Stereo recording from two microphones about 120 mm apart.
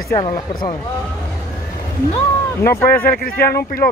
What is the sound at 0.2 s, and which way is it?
Speech, 45° left (ahead or behind).